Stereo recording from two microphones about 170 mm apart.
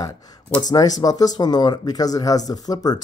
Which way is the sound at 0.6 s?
20° left (ahead or behind).